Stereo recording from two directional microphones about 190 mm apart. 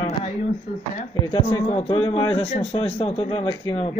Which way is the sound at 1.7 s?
30° left (ahead or behind).